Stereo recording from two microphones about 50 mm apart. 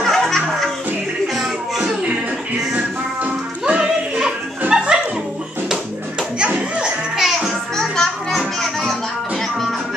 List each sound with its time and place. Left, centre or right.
0.0 s music: centre
3.2 s music: right
6.8 s music: centre
7.7 s music: centre